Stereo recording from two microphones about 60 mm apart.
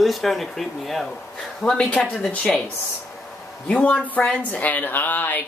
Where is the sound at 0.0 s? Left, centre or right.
Centre.